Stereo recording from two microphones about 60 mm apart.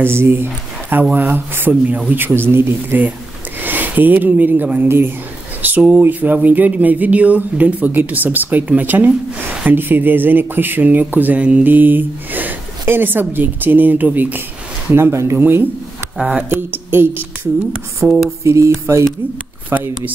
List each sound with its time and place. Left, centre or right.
0.0 s speech: right
5.8 s music: centre
6.0 s speech: right
15.0 s music: right
16.2 s music: centre
16.4 s speech: right
18.0 s music: centre
18.4 s music: right